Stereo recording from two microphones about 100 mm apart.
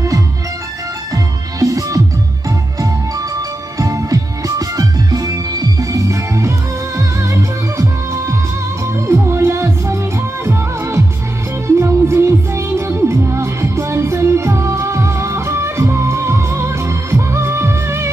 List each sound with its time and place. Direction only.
1.1 s music: 35° right (ahead or behind)
3.7 s music: 35° right (ahead or behind)